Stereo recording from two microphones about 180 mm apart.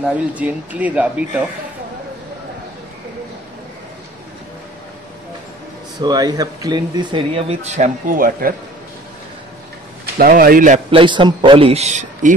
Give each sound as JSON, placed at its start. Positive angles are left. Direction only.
{"t": 0.0, "sound": "a man's voice", "side_deg": -10}
{"t": 5.9, "sound": "speech", "side_deg": -20}
{"t": 10.1, "sound": "speech", "side_deg": -55}
{"t": 10.9, "sound": "a man's voice", "side_deg": -30}